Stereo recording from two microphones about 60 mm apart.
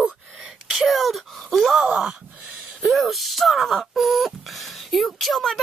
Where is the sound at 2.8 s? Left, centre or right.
Centre.